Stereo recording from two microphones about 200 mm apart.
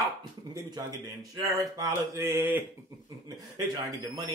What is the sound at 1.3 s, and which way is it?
Speech, 15° right (ahead or behind).